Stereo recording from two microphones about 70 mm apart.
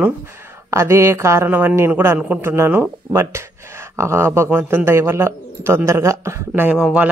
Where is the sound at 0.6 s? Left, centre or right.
Right.